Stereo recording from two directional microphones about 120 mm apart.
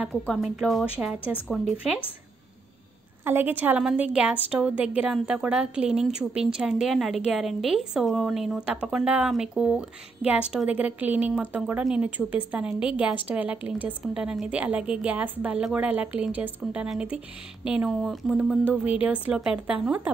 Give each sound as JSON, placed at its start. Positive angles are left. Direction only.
{"t": 0.3, "sound": "speech", "side_deg": 0}
{"t": 3.3, "sound": "a woman's voice", "side_deg": -15}